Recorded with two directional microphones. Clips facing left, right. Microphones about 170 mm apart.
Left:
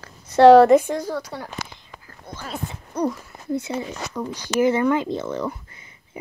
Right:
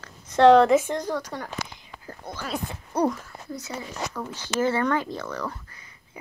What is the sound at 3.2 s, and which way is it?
Speech, 25° left (ahead or behind).